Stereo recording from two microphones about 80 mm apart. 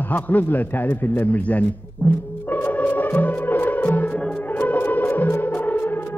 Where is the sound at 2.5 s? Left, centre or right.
Left.